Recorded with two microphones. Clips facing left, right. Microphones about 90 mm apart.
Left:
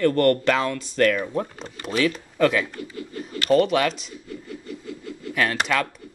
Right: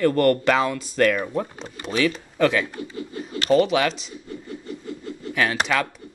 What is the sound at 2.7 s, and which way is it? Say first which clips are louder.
Speech: right 2 dB; 25° right (ahead or behind).